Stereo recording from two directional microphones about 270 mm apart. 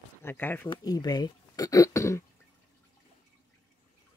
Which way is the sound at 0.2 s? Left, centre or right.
Centre.